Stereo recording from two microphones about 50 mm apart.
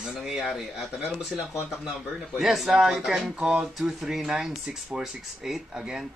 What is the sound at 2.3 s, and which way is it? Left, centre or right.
Speech, centre.